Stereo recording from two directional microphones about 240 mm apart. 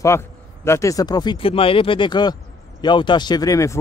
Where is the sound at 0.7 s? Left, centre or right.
Centre.